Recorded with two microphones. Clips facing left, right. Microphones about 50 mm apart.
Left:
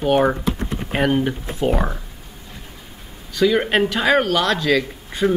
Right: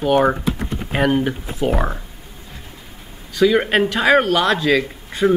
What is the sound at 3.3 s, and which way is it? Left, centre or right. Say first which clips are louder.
Speech: right 2 dB; centre.